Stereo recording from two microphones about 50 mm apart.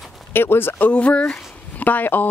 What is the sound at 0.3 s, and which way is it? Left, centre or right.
Speech, left.